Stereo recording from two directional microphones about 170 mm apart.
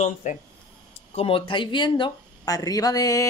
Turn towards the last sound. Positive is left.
turn(degrees=20)  # may be behind; listen again after turning